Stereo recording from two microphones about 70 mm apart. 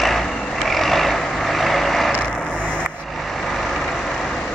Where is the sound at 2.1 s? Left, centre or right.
Centre.